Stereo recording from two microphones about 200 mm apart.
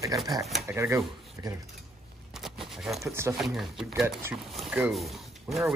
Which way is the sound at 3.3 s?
Centre (ahead or behind).